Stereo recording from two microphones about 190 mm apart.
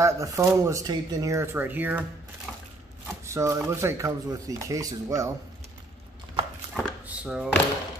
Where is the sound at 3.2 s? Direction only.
15° right (ahead or behind).